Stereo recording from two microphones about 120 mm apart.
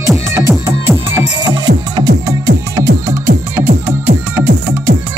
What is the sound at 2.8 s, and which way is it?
Music, 25° right (ahead or behind).